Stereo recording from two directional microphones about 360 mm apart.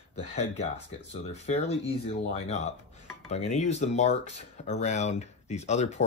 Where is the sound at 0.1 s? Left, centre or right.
Centre.